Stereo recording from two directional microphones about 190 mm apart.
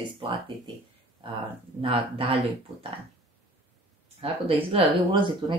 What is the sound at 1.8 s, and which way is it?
Speech, 30° right (ahead or behind).